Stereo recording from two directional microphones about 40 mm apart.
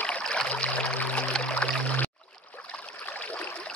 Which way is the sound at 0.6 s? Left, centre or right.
Left.